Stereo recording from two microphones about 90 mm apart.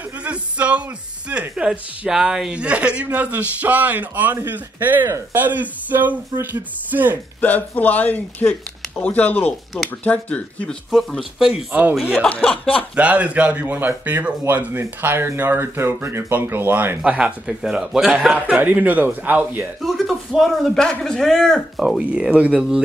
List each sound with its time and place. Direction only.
0.2 s a sound: 15° right (ahead or behind)
1.3 s speech: 10° right (ahead or behind)
7.3 s speech: 20° left (ahead or behind)
10.9 s a man's voice: centre (ahead or behind)
12.3 s speech: 15° left (ahead or behind)
12.9 s speech: 15° right (ahead or behind)
17.0 s speech: 10° right (ahead or behind)
19.8 s a man's voice: centre (ahead or behind)
21.7 s speech: 10° right (ahead or behind)